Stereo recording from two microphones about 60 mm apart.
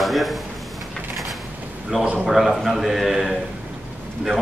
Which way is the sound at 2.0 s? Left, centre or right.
Centre.